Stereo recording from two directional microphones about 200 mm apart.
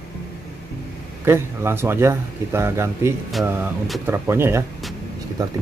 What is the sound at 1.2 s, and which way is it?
A man's voice, 10° right (ahead or behind).